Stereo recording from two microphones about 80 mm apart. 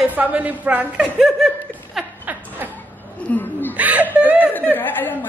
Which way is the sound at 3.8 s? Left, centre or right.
Centre.